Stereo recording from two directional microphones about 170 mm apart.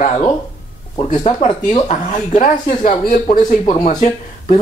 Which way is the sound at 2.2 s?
45° left (ahead or behind).